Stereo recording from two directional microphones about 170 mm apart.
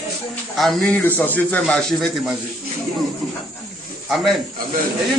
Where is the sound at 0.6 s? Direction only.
5° left (ahead or behind).